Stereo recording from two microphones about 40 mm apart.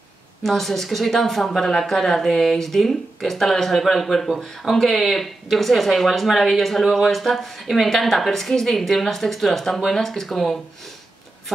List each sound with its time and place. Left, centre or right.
0.4 s speech: centre